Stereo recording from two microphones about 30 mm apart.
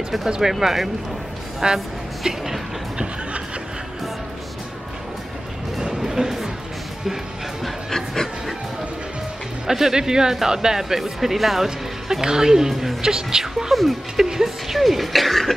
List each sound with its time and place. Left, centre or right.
0.4 s speech: centre
1.6 s a woman's voice: right
6.0 s a sound: centre
7.9 s a sound: centre
9.7 s a woman's voice: centre
11.0 s a woman's voice: centre